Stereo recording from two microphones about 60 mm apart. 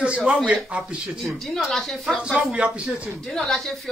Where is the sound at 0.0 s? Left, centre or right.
Centre.